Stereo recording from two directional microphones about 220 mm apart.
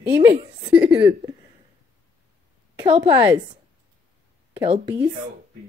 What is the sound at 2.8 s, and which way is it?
Speech, 20° right (ahead or behind).